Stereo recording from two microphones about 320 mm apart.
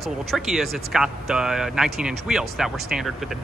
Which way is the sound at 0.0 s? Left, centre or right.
Centre.